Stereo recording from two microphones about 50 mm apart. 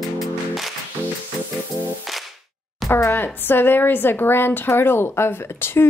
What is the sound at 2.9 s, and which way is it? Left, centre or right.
A woman's voice, left.